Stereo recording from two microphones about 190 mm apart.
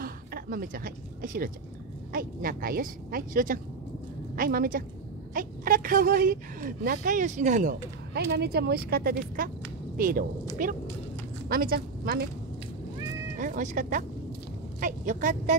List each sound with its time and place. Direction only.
0.0 s a woman's voice: 50° right (ahead or behind)
8.1 s a woman's voice: 60° right (ahead or behind)
13.4 s a woman's voice: 45° right (ahead or behind)